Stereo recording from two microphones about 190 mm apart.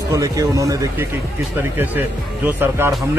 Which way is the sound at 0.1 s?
15° right (ahead or behind).